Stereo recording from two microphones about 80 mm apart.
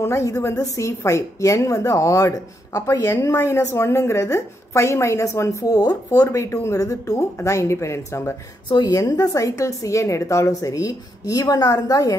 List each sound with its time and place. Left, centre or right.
0.0 s a woman's voice: left
8.8 s a woman's voice: left